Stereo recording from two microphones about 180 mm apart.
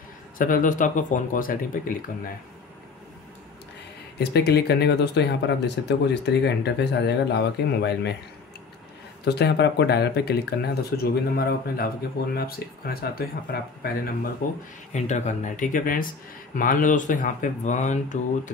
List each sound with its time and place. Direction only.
0.4 s speech: 50° left (ahead or behind)
4.2 s speech: 65° left (ahead or behind)
9.2 s speech: 65° left (ahead or behind); by 18.5 s 40° left (ahead or behind)